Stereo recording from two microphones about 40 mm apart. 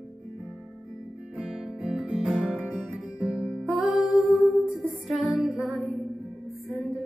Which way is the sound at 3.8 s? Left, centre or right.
Centre.